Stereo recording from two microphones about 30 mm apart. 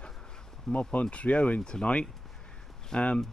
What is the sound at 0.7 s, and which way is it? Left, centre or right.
Speech, centre.